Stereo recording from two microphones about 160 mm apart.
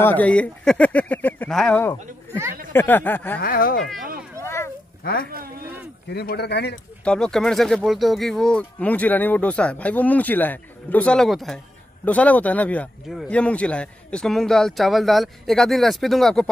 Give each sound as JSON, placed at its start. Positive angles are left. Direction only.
{"t": 0.0, "sound": "speech", "side_deg": 10}
{"t": 3.3, "sound": "speech", "side_deg": 65}
{"t": 4.4, "sound": "a sound", "side_deg": 15}
{"t": 5.0, "sound": "speech", "side_deg": 65}
{"t": 6.0, "sound": "speech", "side_deg": 90}
{"t": 7.1, "sound": "speech", "side_deg": 5}